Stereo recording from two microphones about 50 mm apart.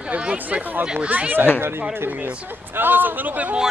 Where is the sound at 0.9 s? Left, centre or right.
Right.